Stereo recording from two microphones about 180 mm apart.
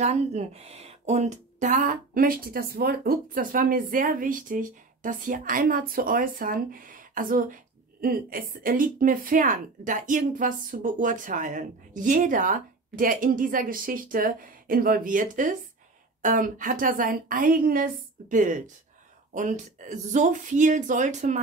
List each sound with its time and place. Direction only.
0.0 s a woman's voice: 35° right (ahead or behind)